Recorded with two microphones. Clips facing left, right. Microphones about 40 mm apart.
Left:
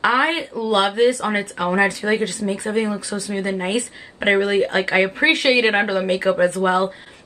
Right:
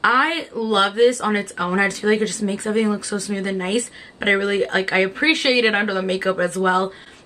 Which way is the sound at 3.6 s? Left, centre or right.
Centre.